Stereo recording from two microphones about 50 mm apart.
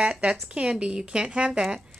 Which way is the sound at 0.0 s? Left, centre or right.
Centre.